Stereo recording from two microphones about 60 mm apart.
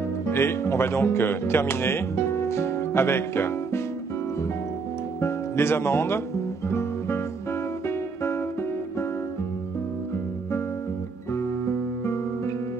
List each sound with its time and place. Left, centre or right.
0.3 s speech: left
5.2 s guitar: left
7.8 s music: left
11.3 s music: left